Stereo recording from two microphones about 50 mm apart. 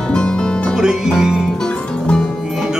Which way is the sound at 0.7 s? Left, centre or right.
Centre.